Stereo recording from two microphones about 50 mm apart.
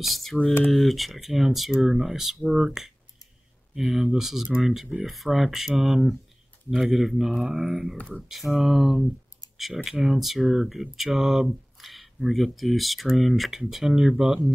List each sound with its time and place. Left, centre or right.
0.0 s speech: centre
7.5 s speech: centre
8.2 s speech: centre